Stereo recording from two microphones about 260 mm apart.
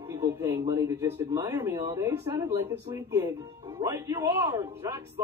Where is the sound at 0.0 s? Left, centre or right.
Centre.